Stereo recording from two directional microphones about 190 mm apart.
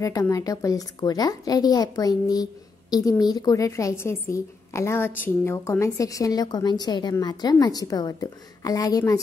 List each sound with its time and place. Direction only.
0.0 s a woman's voice: 15° left (ahead or behind)